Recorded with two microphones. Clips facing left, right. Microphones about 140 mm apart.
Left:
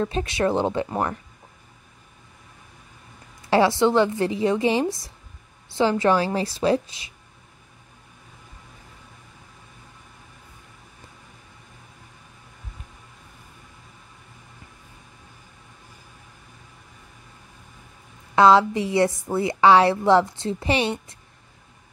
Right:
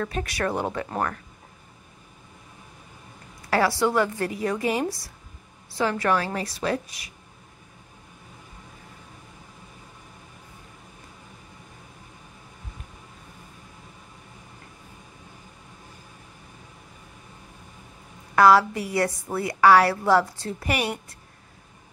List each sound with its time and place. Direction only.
0.0 s a woman's voice: 25° left (ahead or behind)
3.4 s a woman's voice: 25° left (ahead or behind)
18.3 s a woman's voice: 20° left (ahead or behind)